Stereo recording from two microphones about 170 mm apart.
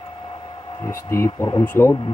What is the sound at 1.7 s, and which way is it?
Speech, 15° left (ahead or behind).